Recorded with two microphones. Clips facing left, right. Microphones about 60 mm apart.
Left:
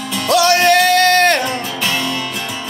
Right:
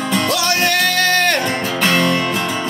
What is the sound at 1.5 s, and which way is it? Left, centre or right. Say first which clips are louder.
Music: right 2 dB; right.